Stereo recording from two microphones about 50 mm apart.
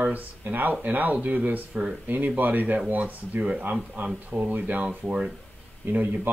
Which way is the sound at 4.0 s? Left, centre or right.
Right.